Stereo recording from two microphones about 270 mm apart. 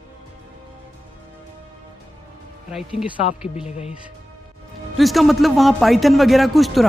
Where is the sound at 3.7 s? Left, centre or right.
Left.